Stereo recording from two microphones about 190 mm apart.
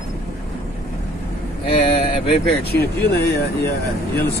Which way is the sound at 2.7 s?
55° left (ahead or behind).